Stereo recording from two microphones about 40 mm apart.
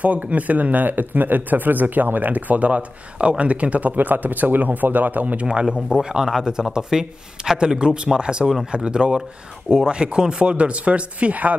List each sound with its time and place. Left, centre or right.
0.0 s speech: right
6.0 s speech: centre; by 11.5 s right